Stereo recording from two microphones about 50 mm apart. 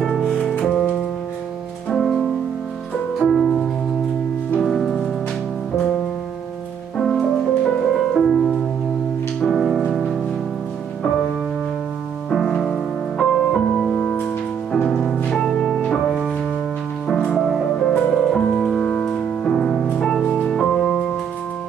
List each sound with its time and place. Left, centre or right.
0.0 s music: centre
3.2 s music: centre
7.0 s music: centre
12.3 s music: centre
17.4 s music: centre
18.6 s music: left
20.3 s music: centre